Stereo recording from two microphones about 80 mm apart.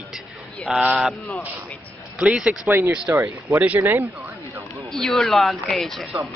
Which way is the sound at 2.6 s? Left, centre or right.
Right.